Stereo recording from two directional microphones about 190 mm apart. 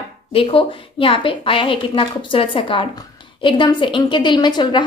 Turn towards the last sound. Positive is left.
turn(degrees=25)  # may be behind; listen again after turning